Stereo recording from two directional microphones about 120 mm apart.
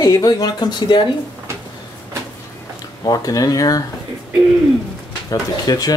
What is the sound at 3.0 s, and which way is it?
Speech, 30° left (ahead or behind).